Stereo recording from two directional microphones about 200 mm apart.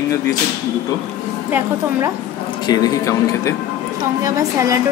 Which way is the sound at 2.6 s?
20° left (ahead or behind).